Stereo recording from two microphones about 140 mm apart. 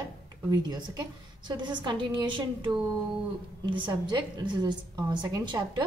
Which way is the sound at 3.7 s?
35° right (ahead or behind).